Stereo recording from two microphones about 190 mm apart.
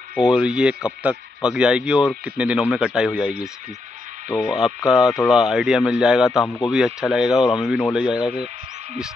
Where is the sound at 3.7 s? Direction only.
40° right (ahead or behind).